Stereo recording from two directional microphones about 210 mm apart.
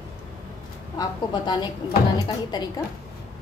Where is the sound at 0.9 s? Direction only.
20° left (ahead or behind).